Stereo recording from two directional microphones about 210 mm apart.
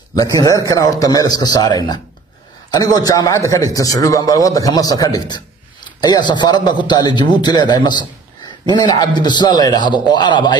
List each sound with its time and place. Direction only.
0.1 s a man's voice: 15° left (ahead or behind)